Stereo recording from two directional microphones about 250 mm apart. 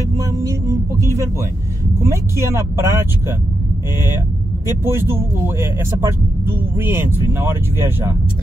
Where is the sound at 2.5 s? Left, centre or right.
Centre.